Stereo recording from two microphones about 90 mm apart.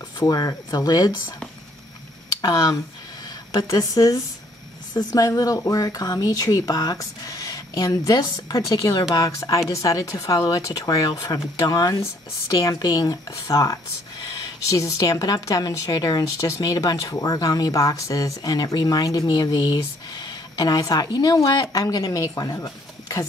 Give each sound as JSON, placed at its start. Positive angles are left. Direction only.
{"t": 0.2, "sound": "speech", "side_deg": 45}
{"t": 2.4, "sound": "speech", "side_deg": 40}